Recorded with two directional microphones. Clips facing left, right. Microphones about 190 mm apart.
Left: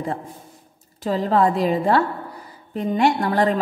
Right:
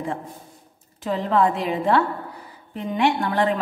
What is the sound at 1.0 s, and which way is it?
A woman's voice, 35° left (ahead or behind).